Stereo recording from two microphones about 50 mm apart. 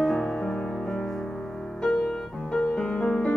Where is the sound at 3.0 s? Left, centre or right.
Left.